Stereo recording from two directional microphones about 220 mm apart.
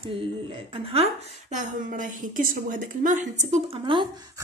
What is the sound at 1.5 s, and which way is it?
A woman's voice, 35° right (ahead or behind).